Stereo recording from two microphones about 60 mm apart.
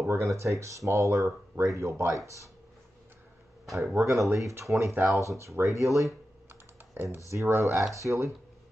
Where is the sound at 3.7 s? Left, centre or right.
Right.